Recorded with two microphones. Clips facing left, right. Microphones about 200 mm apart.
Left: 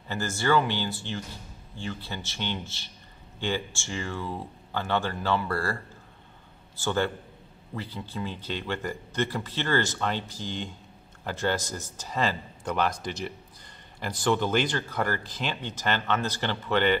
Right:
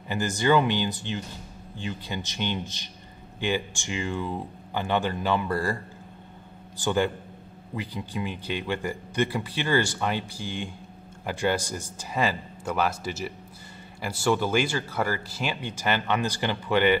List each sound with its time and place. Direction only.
0.1 s speech: 15° right (ahead or behind)
6.8 s speech: 15° right (ahead or behind)